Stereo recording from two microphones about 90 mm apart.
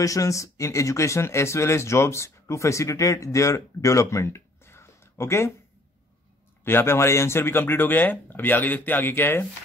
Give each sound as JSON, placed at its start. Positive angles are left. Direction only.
{"t": 0.0, "sound": "speech", "side_deg": 35}
{"t": 6.6, "sound": "speech", "side_deg": 25}